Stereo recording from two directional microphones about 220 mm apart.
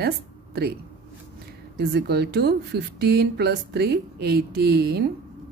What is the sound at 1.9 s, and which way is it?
Speech, 45° right (ahead or behind).